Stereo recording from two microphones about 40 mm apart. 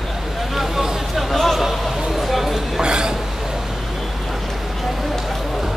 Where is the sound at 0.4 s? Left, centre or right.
Centre.